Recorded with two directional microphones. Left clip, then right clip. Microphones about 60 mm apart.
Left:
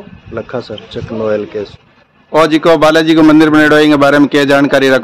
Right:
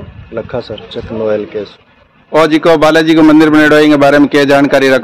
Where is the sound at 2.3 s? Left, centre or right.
Centre.